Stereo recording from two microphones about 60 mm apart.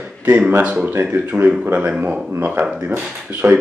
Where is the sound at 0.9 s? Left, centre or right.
Right.